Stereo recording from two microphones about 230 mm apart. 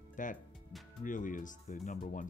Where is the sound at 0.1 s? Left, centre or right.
Left.